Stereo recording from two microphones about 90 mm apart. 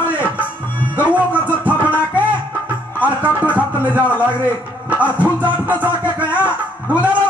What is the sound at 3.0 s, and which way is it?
Music, 20° right (ahead or behind).